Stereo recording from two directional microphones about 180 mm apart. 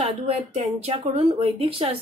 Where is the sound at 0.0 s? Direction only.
35° right (ahead or behind).